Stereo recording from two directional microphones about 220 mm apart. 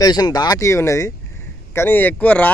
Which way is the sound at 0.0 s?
15° left (ahead or behind).